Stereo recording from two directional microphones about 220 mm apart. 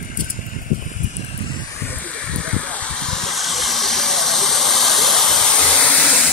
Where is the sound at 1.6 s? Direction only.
10° left (ahead or behind).